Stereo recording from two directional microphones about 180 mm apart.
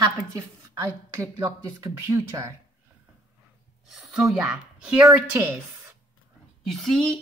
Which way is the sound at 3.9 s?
Centre (ahead or behind).